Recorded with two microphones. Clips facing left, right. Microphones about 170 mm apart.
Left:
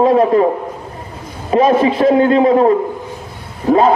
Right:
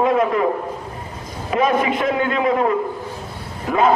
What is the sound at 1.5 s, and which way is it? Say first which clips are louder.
A man's voice: left 6 dB; 30° left (ahead or behind).